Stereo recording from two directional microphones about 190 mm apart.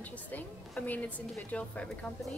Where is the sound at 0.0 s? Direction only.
10° left (ahead or behind).